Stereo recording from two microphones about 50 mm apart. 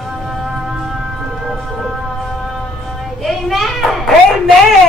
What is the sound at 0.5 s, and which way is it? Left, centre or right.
Music, centre.